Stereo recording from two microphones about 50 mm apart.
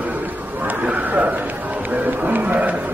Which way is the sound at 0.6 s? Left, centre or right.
Right.